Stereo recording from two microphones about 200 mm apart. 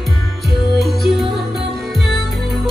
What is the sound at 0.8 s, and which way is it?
Music, centre (ahead or behind).